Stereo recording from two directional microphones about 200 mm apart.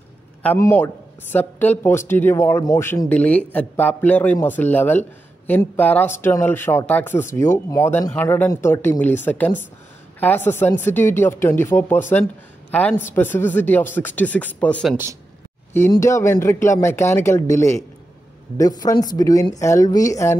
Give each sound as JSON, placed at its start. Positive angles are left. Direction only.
{"t": 0.4, "sound": "speech", "side_deg": 10}